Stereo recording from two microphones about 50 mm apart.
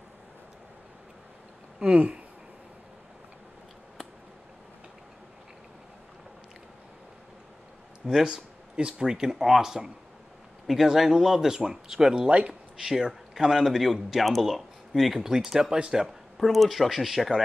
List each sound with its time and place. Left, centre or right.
1.8 s speech: right
8.0 s a sound: centre
8.7 s speech: centre
12.3 s speech: right
12.8 s speech: centre
16.3 s speech: centre